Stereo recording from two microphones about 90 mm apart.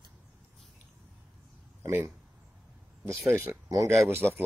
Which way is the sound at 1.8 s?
30° right (ahead or behind).